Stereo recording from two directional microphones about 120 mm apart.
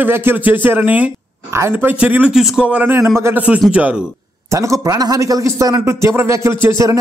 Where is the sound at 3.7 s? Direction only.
10° right (ahead or behind).